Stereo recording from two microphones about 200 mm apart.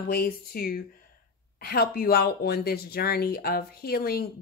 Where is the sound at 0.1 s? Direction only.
50° left (ahead or behind).